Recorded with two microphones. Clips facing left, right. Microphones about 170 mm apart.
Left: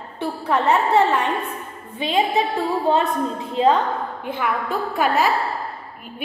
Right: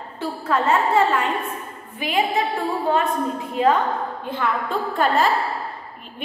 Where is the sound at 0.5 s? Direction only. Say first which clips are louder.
Left 1 dB; 20° left (ahead or behind).